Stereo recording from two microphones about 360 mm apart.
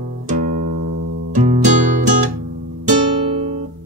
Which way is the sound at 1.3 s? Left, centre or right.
Centre.